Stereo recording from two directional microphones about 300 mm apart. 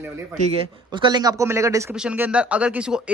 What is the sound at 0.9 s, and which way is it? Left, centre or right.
A man's voice, centre.